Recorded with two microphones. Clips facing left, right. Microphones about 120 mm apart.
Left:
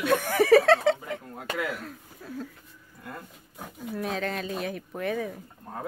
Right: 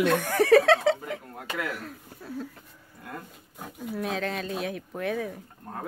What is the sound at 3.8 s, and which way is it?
Speech, centre (ahead or behind).